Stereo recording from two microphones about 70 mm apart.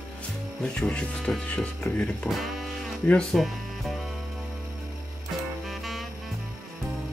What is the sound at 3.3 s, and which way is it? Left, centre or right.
Speech, centre.